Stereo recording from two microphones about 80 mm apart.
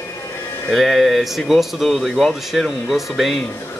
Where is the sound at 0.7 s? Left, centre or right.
Centre.